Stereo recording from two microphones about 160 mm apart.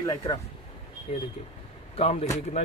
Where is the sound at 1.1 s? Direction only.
40° left (ahead or behind).